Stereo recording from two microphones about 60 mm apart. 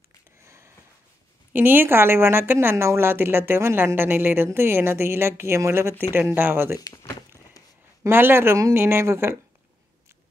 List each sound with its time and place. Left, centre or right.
1.5 s a woman's voice: right
6.8 s a sound: left
8.1 s a woman's voice: right